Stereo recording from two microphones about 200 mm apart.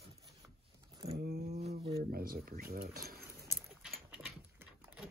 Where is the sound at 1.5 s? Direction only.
30° right (ahead or behind).